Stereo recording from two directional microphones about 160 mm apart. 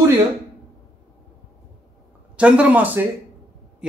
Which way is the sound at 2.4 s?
5° right (ahead or behind).